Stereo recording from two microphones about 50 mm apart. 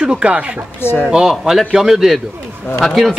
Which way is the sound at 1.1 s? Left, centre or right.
Centre.